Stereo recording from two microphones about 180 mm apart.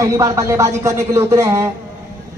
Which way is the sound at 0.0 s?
20° right (ahead or behind).